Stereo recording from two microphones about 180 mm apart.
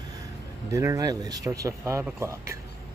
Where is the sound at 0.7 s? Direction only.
15° right (ahead or behind).